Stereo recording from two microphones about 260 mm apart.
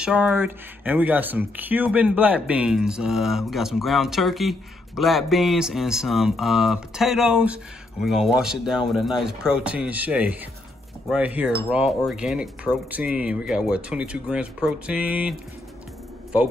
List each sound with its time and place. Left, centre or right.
0.0 s speech: centre